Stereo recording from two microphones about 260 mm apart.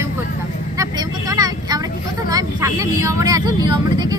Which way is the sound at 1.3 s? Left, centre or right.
Centre.